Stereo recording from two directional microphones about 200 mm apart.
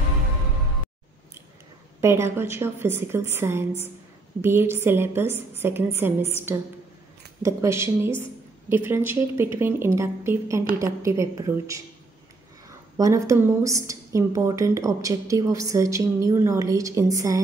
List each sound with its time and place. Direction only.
2.0 s a woman's voice: 15° right (ahead or behind)
7.4 s a woman's voice: 15° right (ahead or behind)
12.9 s a woman's voice: 15° right (ahead or behind)